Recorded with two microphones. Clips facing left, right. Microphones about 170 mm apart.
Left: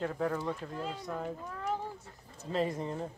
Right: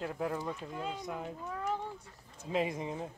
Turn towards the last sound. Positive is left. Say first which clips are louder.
# left 2 dB
turn(degrees=-10)  # may be behind; listen again after turning